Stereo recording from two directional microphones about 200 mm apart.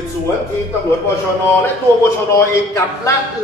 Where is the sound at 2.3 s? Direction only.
15° left (ahead or behind).